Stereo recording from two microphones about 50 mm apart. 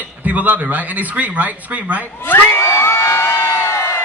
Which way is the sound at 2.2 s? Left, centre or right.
Left.